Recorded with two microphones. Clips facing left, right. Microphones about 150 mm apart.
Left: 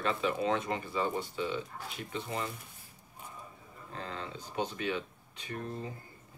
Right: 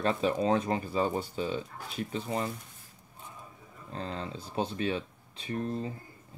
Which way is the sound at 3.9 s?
35° right (ahead or behind).